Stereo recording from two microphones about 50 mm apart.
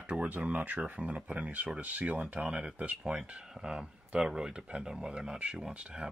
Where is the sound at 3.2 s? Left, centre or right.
Centre.